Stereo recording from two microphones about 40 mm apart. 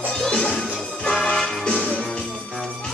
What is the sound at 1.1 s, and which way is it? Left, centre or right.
Music, centre.